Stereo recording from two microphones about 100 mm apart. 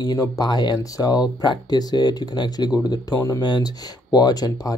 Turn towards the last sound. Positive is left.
turn(degrees=40)  # may be behind; listen again after turning